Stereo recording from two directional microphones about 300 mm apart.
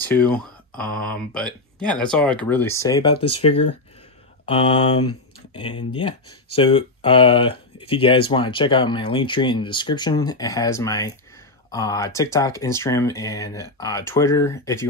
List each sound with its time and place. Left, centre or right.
0.0 s speech: centre
6.5 s speech: centre